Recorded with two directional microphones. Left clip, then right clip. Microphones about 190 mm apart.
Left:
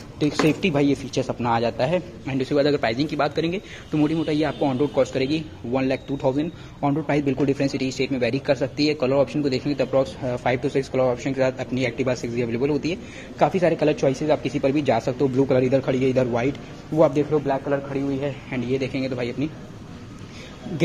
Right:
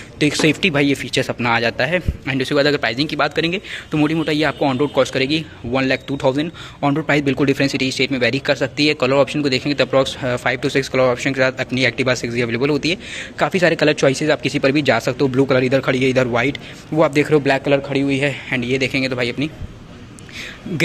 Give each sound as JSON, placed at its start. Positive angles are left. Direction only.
{"t": 0.2, "sound": "a man's voice", "side_deg": -5}
{"t": 17.3, "sound": "a man's voice", "side_deg": -40}
{"t": 18.2, "sound": "speech", "side_deg": -10}